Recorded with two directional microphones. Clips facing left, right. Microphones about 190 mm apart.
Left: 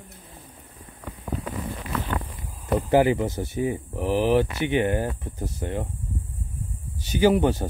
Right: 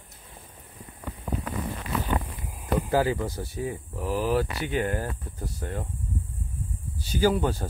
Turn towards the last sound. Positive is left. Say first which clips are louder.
# left 4 dB
turn(degrees=20)  # may be behind; listen again after turning